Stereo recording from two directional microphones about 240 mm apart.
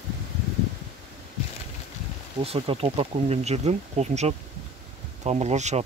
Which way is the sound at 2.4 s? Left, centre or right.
Right.